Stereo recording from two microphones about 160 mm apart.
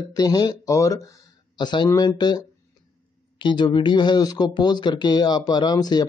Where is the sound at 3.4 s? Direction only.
30° left (ahead or behind).